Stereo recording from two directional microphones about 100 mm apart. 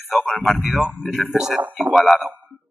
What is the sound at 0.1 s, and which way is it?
A man's voice, 5° left (ahead or behind).